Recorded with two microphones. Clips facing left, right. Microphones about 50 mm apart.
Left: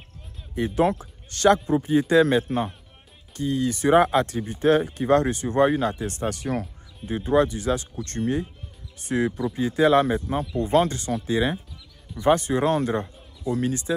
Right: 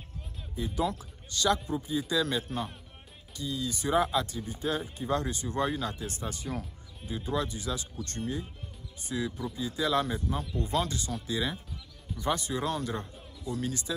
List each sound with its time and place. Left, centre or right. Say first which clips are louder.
0.6 s speech: left 9 dB; left